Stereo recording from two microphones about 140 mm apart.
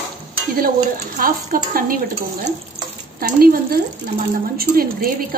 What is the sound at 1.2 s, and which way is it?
Speech, 80° right.